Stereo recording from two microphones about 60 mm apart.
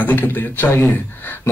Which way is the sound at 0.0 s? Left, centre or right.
Left.